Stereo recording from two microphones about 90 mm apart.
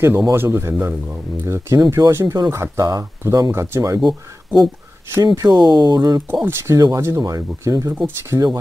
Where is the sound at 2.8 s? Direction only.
40° right (ahead or behind).